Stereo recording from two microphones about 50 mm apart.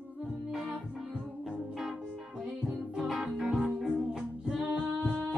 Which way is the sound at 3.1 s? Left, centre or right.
Centre.